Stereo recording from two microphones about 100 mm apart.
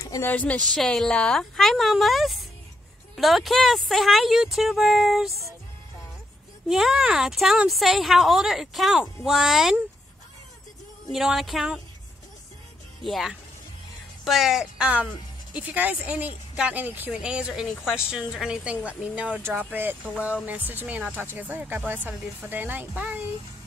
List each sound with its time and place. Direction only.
0.2 s speech: 15° left (ahead or behind); by 5.3 s centre (ahead or behind)
6.7 s speech: 5° right (ahead or behind)
11.1 s speech: 5° right (ahead or behind)
13.0 s speech: centre (ahead or behind); by 23.2 s 15° right (ahead or behind)